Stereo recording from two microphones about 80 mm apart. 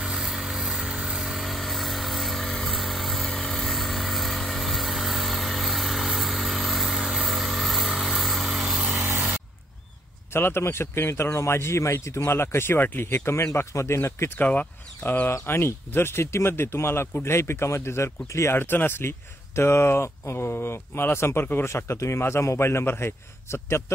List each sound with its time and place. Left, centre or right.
0.0 s vehicle: centre
10.3 s speech: left
14.4 s speech: centre